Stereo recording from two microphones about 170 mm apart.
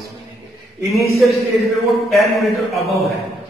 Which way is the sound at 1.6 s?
Centre (ahead or behind).